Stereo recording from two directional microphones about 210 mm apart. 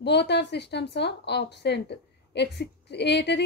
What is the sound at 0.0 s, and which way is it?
A woman's voice, 55° left (ahead or behind).